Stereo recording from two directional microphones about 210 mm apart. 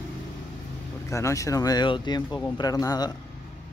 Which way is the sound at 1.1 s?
15° left (ahead or behind).